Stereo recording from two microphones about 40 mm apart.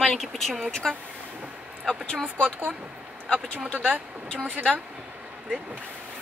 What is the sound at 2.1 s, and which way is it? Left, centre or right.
Speech, centre.